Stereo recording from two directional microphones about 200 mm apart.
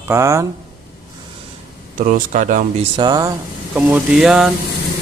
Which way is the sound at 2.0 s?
40° right (ahead or behind).